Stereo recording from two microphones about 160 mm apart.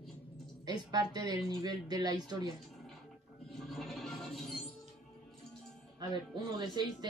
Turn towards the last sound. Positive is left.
turn(degrees=-25)  # may be behind; listen again after turning